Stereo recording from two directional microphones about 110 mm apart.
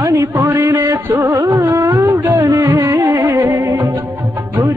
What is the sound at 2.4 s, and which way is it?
Music, 30° right (ahead or behind).